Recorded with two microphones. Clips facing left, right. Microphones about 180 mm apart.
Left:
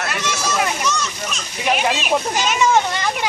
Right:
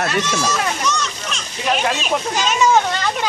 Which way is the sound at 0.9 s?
5° left (ahead or behind).